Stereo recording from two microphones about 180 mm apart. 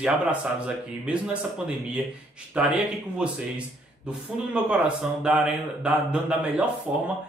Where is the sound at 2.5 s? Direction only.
5° right (ahead or behind).